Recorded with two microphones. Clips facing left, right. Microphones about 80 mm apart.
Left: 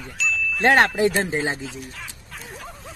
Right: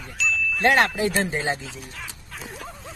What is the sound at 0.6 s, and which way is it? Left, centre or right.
Speech, left.